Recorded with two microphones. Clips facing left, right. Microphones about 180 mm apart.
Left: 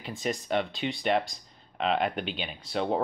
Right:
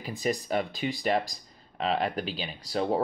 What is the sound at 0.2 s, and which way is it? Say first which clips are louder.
Speech: right 1 dB; 5° right (ahead or behind).